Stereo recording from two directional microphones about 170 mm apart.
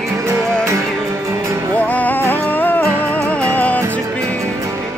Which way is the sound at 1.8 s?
10° left (ahead or behind).